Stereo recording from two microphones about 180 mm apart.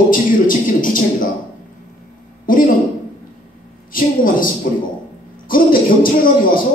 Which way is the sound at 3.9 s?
50° left (ahead or behind).